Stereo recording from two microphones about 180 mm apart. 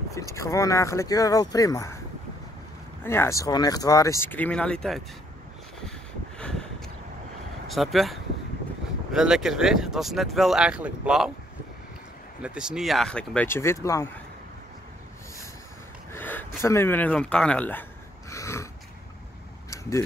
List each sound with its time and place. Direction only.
0.1 s speech: 15° left (ahead or behind)
3.0 s speech: 15° left (ahead or behind)
6.3 s a sound: 5° left (ahead or behind)
7.6 s speech: centre (ahead or behind)
12.4 s speech: 5° right (ahead or behind); by 14.1 s 15° left (ahead or behind)
16.1 s a sound: 10° left (ahead or behind)
16.6 s speech: 15° left (ahead or behind)
18.3 s snort: 15° left (ahead or behind)
19.7 s vehicle: 15° left (ahead or behind)